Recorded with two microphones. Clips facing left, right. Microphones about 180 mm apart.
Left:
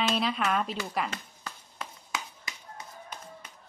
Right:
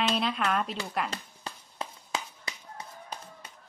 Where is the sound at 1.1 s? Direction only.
30° right (ahead or behind).